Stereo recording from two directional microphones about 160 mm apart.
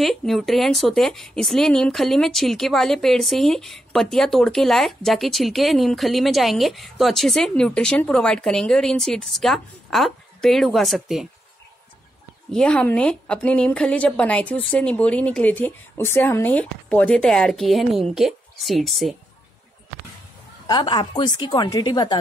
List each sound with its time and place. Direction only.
0.0 s a woman's voice: centre (ahead or behind)
12.4 s a woman's voice: 5° left (ahead or behind)
20.6 s a woman's voice: 25° left (ahead or behind)